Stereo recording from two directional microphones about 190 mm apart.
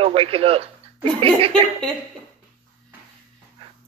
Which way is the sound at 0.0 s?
30° right (ahead or behind).